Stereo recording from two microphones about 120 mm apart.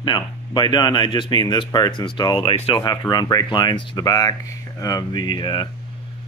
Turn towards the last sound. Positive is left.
turn(degrees=40)  # may be behind; listen again after turning